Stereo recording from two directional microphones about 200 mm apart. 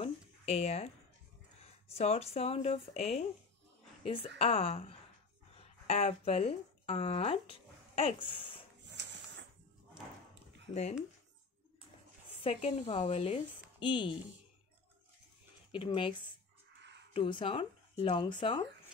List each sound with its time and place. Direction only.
0.0 s a sound: 30° left (ahead or behind)
2.0 s a woman's voice: 30° left (ahead or behind)
8.8 s a sound: 60° right (ahead or behind)
10.7 s speech: 35° left (ahead or behind)
12.4 s speech: 30° left (ahead or behind)
15.7 s speech: 25° left (ahead or behind)